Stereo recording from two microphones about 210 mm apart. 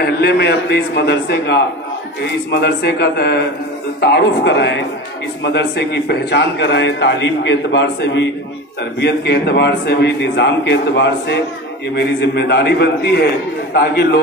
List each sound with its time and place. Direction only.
0.0 s a man's voice: 50° left (ahead or behind)